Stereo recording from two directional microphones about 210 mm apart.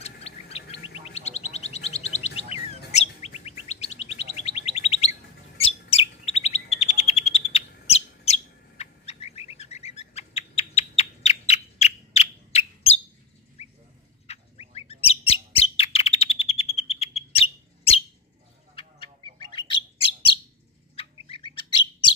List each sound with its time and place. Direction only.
0.0 s bird: 30° left (ahead or behind)
0.9 s a sound: 30° left (ahead or behind)
2.9 s chirp: 30° left (ahead or behind)
5.6 s bird: 30° left (ahead or behind)
14.2 s squawk: 30° left (ahead or behind)
14.9 s bird: 30° left (ahead or behind)
19.3 s bird: 20° left (ahead or behind)